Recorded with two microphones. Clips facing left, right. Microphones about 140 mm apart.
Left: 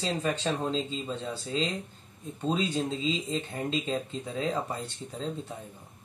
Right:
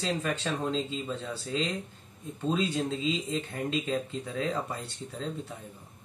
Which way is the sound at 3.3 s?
30° left (ahead or behind).